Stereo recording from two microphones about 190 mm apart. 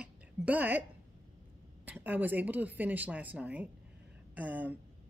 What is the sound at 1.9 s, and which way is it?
A woman's voice, 10° right (ahead or behind).